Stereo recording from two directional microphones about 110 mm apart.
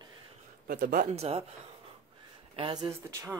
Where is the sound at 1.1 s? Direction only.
65° right (ahead or behind).